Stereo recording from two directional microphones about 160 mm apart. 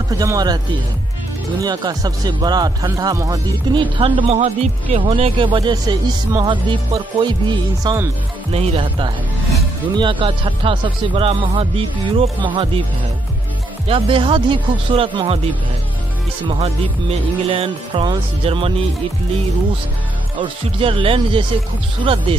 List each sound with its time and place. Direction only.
0.2 s speech: 25° right (ahead or behind)
1.6 s speech: 25° right (ahead or behind)
8.5 s speech: 35° right (ahead or behind)
13.8 s speech: 35° right (ahead or behind)
16.4 s speech: 35° right (ahead or behind)
20.3 s speech: 35° right (ahead or behind)